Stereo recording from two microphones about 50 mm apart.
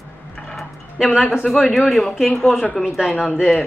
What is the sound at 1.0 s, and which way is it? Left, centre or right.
A woman's voice, centre.